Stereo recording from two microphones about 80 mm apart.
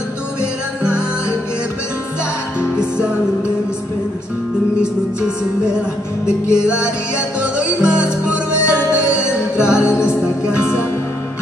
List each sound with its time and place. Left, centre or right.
0.4 s music: centre
6.2 s music: left
7.3 s music: centre
8.0 s music: left